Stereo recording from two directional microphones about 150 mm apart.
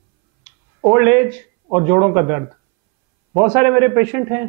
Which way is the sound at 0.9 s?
15° right (ahead or behind).